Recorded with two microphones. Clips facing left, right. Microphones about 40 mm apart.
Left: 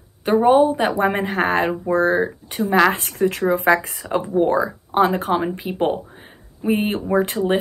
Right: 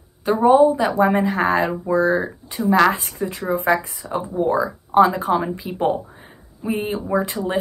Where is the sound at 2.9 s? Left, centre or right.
Left.